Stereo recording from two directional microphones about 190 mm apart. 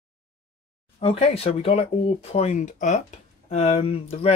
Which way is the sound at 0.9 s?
35° left (ahead or behind).